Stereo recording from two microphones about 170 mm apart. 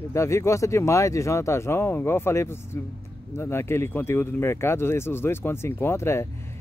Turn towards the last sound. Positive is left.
turn(degrees=15)  # may be behind; listen again after turning